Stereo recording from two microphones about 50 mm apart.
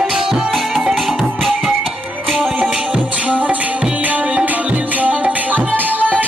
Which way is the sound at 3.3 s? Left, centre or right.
Right.